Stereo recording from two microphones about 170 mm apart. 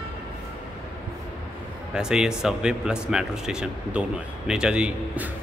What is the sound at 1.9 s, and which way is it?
Speech, 5° right (ahead or behind).